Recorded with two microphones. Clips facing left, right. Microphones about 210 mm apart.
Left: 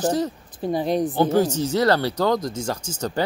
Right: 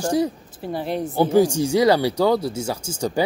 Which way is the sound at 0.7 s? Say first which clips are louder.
Left 3 dB; 15° left (ahead or behind).